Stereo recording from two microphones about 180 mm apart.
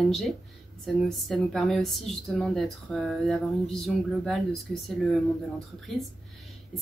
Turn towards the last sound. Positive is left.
turn(degrees=0)  # may be behind; listen again after turning